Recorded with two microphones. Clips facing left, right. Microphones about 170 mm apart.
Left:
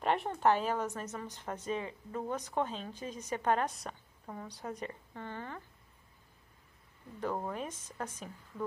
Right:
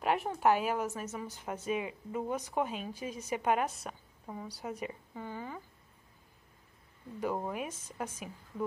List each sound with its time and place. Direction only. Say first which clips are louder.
0.0 s a woman's voice: right 1 dB; 5° right (ahead or behind)
7.2 s a woman's voice: right 2 dB; 10° right (ahead or behind)